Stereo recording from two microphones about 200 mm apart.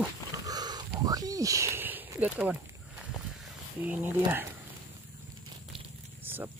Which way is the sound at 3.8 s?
10° right (ahead or behind).